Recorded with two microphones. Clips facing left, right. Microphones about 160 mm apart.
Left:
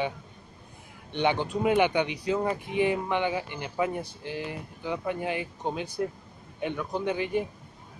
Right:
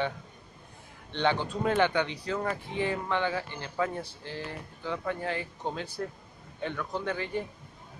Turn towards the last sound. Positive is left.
turn(degrees=15)  # may be behind; listen again after turning